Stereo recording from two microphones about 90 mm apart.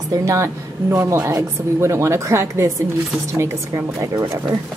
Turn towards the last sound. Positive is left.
turn(degrees=-30)  # may be behind; listen again after turning